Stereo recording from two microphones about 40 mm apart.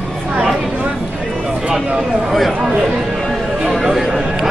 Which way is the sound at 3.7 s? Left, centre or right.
Centre.